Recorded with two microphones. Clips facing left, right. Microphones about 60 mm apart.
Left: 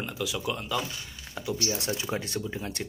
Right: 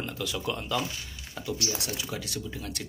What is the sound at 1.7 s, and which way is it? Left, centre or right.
Speech, left.